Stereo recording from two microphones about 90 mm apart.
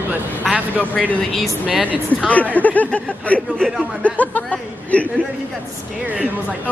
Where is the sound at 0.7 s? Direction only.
15° left (ahead or behind).